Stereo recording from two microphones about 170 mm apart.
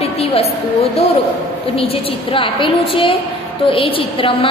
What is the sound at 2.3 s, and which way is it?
A woman's voice, 30° left (ahead or behind).